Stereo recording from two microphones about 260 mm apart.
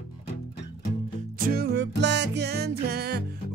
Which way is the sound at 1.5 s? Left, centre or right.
Right.